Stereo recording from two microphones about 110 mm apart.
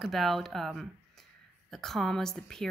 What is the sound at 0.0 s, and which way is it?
Speech, centre (ahead or behind).